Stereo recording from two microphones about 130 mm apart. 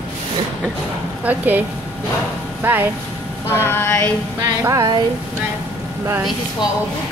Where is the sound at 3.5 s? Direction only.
15° left (ahead or behind).